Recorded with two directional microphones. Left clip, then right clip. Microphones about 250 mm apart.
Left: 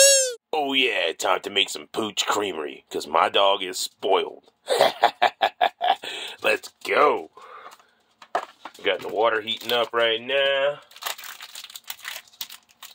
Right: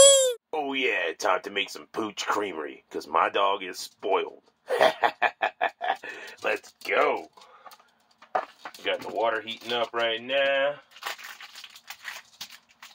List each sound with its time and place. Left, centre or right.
0.5 s a sound: left
1.2 s speech: left
8.8 s speech: left